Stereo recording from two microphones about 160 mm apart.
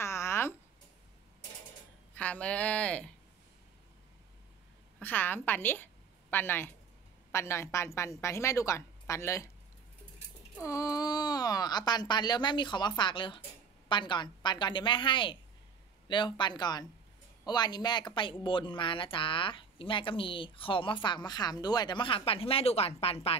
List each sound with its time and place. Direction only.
0.0 s a sound: 15° left (ahead or behind)
2.1 s a woman's voice: 10° left (ahead or behind)
5.0 s a woman's voice: 10° left (ahead or behind)
10.6 s a woman's voice: 20° left (ahead or behind); by 23.3 s 40° left (ahead or behind)